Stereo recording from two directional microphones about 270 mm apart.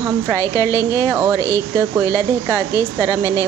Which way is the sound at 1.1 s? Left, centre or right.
Centre.